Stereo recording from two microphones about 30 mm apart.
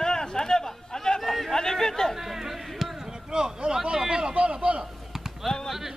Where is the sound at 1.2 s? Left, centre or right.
Centre.